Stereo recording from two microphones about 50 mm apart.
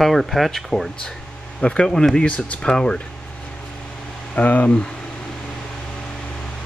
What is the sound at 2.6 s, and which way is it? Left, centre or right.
Speech, centre.